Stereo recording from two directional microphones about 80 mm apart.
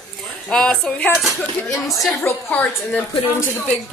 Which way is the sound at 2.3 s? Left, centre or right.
Left.